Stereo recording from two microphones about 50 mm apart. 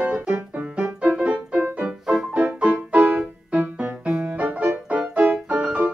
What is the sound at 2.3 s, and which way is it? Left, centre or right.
Music, right.